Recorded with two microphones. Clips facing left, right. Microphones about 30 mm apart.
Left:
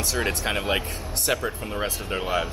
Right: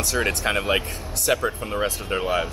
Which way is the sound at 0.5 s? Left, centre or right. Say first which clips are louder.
Right 3 dB; centre.